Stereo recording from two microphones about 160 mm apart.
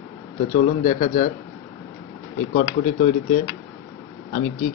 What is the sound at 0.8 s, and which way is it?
Speech, 50° left (ahead or behind).